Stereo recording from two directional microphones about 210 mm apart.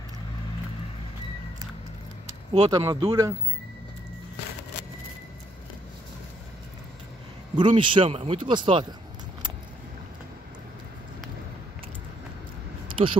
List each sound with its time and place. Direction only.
2.5 s speech: 20° right (ahead or behind)
7.5 s speech: 25° right (ahead or behind)
12.8 s a sound: 25° right (ahead or behind)